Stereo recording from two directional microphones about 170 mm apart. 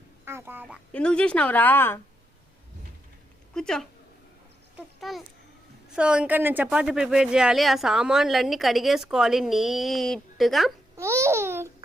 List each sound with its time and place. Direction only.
0.2 s speech: 15° right (ahead or behind)
0.9 s a woman's voice: 5° left (ahead or behind)
3.5 s a woman's voice: 5° left (ahead or behind)
5.1 s a woman's voice: centre (ahead or behind)
11.0 s babbling: 15° right (ahead or behind)